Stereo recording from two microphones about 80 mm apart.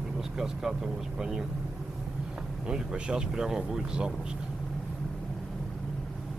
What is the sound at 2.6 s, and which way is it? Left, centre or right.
Speech, centre.